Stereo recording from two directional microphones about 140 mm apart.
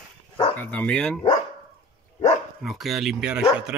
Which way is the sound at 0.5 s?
10° left (ahead or behind).